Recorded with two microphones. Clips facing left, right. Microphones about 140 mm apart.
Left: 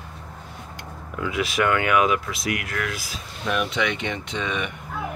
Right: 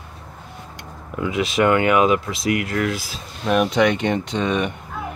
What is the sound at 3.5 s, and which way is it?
Speech, 45° right (ahead or behind).